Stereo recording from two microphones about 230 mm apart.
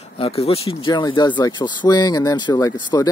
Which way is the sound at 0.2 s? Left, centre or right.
Left.